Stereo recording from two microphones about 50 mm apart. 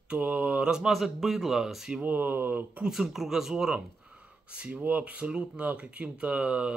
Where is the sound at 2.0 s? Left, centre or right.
Right.